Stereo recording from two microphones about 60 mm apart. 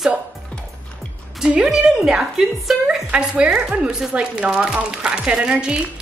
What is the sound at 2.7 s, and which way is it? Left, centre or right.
Speech, centre.